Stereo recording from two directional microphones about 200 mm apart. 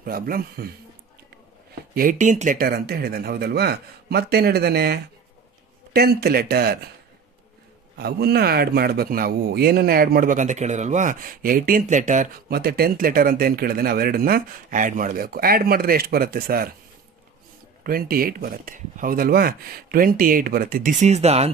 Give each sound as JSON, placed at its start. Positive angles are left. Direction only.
{"t": 0.0, "sound": "speech", "side_deg": -50}
{"t": 2.0, "sound": "speech", "side_deg": -40}
{"t": 8.0, "sound": "speech", "side_deg": -50}
{"t": 17.8, "sound": "speech", "side_deg": -45}